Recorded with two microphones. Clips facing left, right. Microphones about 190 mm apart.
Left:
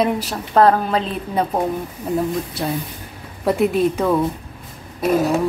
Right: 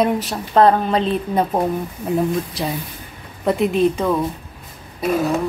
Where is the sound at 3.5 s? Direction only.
Centre (ahead or behind).